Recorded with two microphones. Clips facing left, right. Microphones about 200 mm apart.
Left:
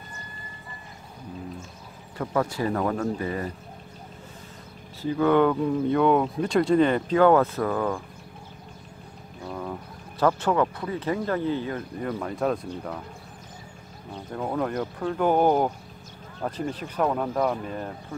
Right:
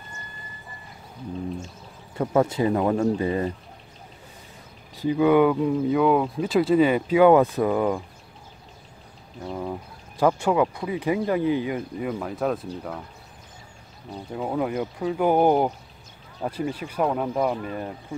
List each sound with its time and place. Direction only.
2.1 s speech: 25° right (ahead or behind)
5.0 s speech: 10° right (ahead or behind)
9.5 s speech: 15° right (ahead or behind)
12.1 s speech: centre (ahead or behind)
14.3 s speech: 10° right (ahead or behind)